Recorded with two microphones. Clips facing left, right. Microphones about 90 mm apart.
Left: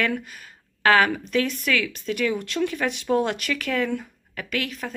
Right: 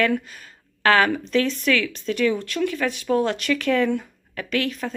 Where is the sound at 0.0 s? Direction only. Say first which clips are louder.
Right 4 dB; 10° left (ahead or behind).